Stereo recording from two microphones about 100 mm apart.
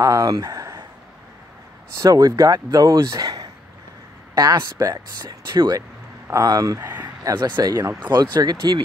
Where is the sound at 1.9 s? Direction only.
35° right (ahead or behind).